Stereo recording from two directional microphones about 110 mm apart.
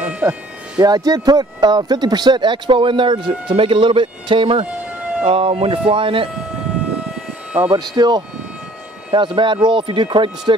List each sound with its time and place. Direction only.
0.1 s music: 20° right (ahead or behind)
0.7 s speech: 35° right (ahead or behind); by 6.2 s 50° right (ahead or behind)
7.7 s speech: 40° right (ahead or behind)